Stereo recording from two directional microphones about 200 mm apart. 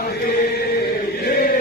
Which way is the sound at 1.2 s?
45° left (ahead or behind).